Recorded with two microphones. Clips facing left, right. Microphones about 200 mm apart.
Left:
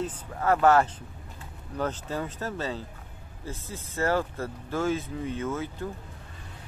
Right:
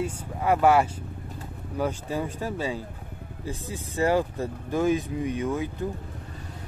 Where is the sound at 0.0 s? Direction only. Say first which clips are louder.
Right 1 dB; 10° right (ahead or behind).